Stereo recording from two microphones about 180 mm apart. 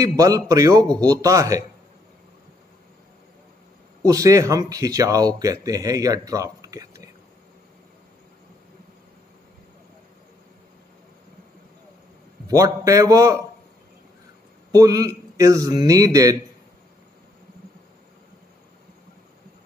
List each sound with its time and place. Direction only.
0.0 s speech: 20° right (ahead or behind)
4.0 s speech: 20° right (ahead or behind)
12.4 s speech: 20° right (ahead or behind)
14.7 s speech: 20° right (ahead or behind)